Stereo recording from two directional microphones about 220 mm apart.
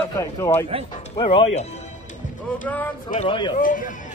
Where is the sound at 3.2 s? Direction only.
20° left (ahead or behind).